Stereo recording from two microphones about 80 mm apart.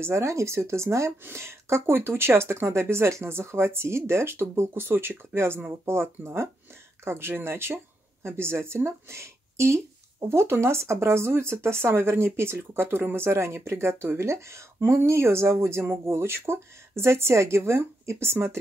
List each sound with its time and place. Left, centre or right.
0.0 s speech: right